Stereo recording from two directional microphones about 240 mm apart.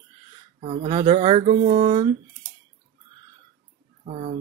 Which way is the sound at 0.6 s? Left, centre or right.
Right.